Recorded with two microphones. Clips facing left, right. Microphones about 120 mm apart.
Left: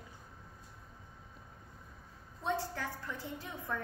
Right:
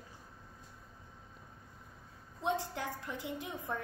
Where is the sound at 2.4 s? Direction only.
20° right (ahead or behind).